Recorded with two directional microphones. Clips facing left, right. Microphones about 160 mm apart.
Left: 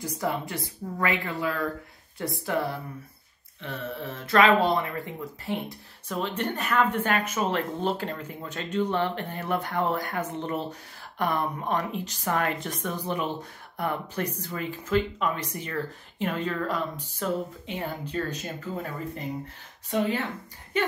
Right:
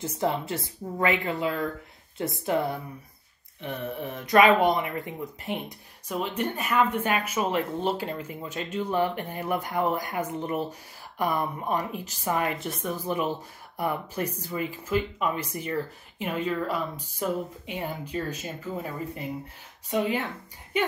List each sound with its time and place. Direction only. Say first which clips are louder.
0.0 s speech: right 2 dB; 25° right (ahead or behind); by 20.1 s 5° right (ahead or behind)